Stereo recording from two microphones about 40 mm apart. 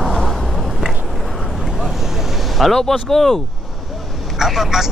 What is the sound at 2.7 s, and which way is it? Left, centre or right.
Speech, centre.